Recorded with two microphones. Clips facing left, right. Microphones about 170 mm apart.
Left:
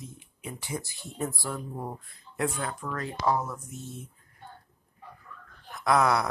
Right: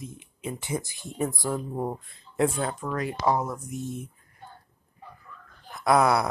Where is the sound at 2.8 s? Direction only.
15° right (ahead or behind).